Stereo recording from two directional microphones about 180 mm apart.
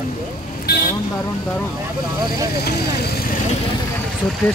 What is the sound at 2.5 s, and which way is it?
Speech, 60° left (ahead or behind).